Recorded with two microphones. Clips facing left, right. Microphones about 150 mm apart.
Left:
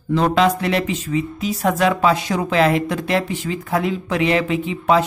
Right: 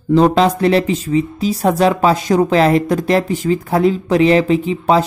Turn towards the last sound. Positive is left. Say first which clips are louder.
# right 4 dB
turn(degrees=-35)  # may be behind; listen again after turning